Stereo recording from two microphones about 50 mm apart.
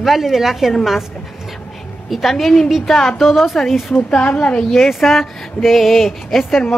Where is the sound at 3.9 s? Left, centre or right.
Left.